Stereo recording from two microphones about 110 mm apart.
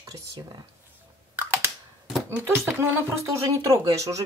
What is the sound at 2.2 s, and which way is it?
Speech, 20° right (ahead or behind).